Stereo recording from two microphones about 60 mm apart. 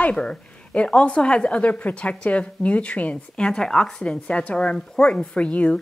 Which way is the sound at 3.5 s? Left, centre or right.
Centre.